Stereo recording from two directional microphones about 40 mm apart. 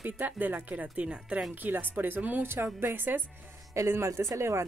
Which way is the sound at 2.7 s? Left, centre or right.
Right.